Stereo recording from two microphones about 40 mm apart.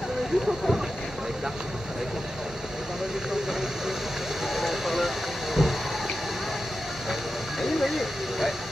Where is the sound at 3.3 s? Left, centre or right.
Centre.